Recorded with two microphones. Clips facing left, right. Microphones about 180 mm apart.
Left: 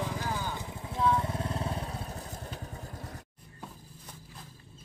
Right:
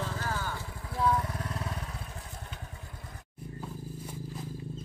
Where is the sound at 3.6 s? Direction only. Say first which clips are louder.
Right 5 dB; 10° right (ahead or behind).